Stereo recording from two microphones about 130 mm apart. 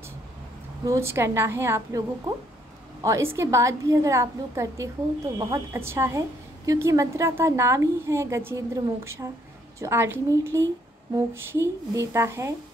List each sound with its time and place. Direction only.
0.8 s a woman's voice: 20° right (ahead or behind)